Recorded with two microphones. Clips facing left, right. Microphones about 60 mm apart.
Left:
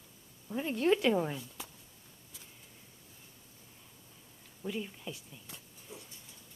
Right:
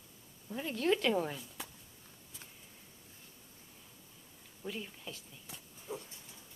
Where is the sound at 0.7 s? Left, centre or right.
Left.